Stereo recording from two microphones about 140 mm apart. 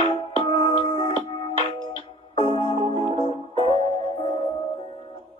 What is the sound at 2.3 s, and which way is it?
Music, 40° left (ahead or behind).